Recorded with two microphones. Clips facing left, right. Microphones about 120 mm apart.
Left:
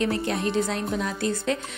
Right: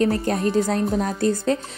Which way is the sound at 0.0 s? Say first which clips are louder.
Right 5 dB; 40° right (ahead or behind).